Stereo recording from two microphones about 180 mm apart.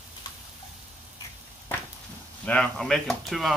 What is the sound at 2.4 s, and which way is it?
Speech, 5° left (ahead or behind).